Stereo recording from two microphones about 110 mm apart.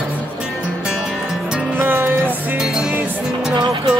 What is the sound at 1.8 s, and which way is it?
Music, 20° right (ahead or behind).